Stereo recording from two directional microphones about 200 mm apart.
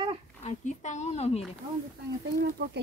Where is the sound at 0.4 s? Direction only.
35° left (ahead or behind).